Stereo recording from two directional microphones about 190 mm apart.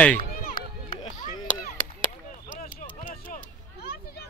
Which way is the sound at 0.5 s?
40° left (ahead or behind).